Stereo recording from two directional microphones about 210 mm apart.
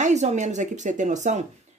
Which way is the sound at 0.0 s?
35° right (ahead or behind).